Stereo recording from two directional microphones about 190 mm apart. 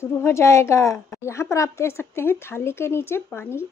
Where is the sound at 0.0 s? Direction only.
15° left (ahead or behind).